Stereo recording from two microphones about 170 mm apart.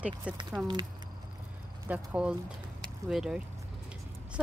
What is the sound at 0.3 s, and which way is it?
Speech, 5° right (ahead or behind).